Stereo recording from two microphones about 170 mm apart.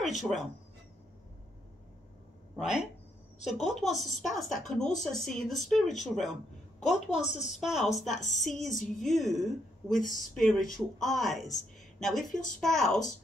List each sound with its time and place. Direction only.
0.1 s speech: centre (ahead or behind)
2.5 s speech: 5° right (ahead or behind)
7.3 s speech: centre (ahead or behind)
8.6 s a woman's voice: 45° left (ahead or behind)
9.1 s speech: centre (ahead or behind)